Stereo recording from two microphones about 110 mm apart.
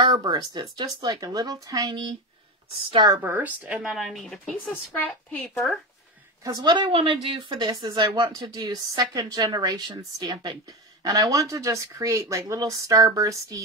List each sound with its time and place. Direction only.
0.0 s speech: 40° right (ahead or behind)
3.2 s a woman's voice: 15° right (ahead or behind)
3.9 s speech: centre (ahead or behind)
4.9 s a woman's voice: 15° left (ahead or behind)
6.4 s speech: 40° right (ahead or behind)